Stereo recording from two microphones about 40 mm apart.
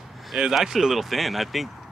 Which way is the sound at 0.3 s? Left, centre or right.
Centre.